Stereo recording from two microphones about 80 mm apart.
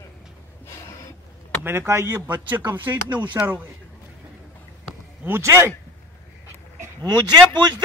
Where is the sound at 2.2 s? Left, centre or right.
Right.